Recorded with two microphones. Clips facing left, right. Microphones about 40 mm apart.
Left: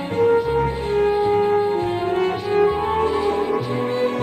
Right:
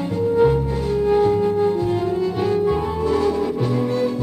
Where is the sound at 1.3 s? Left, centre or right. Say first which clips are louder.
Even; left.